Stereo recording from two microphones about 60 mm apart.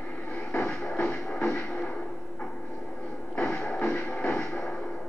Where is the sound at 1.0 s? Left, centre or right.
Centre.